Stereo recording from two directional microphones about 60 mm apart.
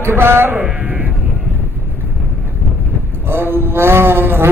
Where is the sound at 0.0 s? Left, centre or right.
Right.